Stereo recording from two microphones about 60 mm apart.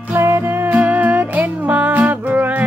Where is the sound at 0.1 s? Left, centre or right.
Right.